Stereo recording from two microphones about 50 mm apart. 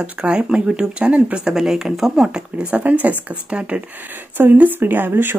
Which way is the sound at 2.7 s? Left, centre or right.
Right.